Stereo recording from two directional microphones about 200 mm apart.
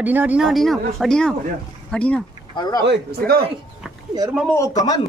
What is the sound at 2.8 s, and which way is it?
Speech, 60° right (ahead or behind).